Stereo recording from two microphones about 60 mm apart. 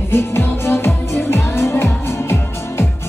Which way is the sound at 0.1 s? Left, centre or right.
Left.